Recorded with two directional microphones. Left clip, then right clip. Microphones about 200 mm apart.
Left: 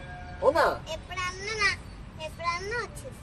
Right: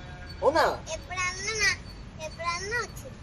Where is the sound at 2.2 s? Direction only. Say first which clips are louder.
Even; 25° left (ahead or behind).